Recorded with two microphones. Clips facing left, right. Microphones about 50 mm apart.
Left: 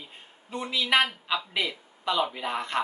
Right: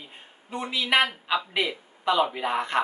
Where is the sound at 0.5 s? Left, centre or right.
Centre.